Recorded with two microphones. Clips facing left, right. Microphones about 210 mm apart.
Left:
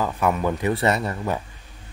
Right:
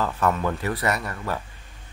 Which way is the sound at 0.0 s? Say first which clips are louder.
Left 1 dB; 15° left (ahead or behind).